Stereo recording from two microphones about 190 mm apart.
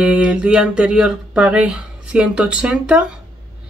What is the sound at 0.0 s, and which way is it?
Speech, 5° right (ahead or behind).